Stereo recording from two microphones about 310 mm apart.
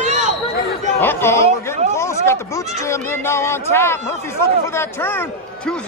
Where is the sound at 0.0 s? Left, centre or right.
Right.